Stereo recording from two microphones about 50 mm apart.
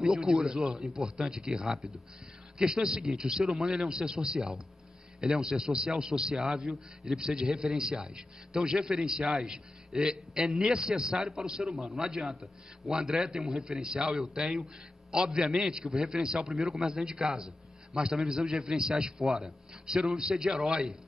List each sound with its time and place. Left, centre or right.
0.1 s a man's voice: centre
12.9 s a man's voice: centre
16.6 s a man's voice: centre
16.9 s a man's voice: centre